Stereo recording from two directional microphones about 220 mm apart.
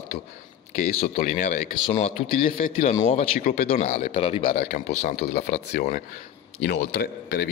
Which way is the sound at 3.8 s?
30° left (ahead or behind).